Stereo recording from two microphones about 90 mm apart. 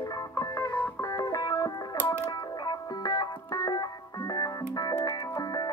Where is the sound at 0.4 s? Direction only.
40° left (ahead or behind).